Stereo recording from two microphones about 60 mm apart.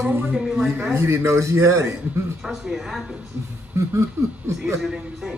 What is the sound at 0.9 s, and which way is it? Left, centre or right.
A man's voice, right.